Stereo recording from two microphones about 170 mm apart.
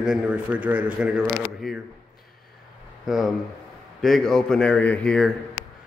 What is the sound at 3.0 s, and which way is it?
Speech, centre (ahead or behind).